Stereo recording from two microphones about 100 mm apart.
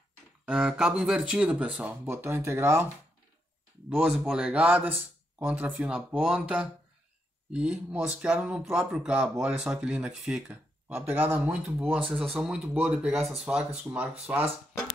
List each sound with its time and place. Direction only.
0.5 s speech: 5° right (ahead or behind); by 2.9 s 25° right (ahead or behind)
4.0 s speech: 10° right (ahead or behind)
11.1 s speech: 20° right (ahead or behind)